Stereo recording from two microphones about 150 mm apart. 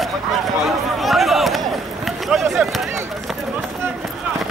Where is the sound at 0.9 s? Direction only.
Centre (ahead or behind).